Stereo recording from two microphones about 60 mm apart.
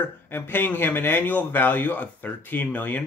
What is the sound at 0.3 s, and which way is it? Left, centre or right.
A man's voice, left.